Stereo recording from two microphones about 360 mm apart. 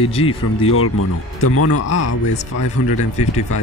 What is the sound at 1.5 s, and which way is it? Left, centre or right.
A man's voice, left.